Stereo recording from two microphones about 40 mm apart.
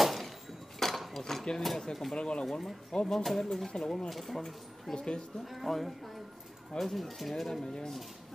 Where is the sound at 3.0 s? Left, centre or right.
Centre.